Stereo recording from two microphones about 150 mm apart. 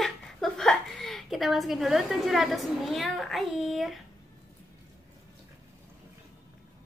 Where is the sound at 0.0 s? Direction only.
5° left (ahead or behind).